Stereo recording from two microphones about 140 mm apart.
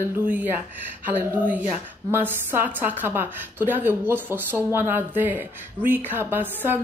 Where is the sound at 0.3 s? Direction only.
10° right (ahead or behind).